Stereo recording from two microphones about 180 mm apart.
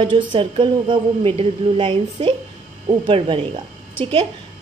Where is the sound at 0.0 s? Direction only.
25° right (ahead or behind).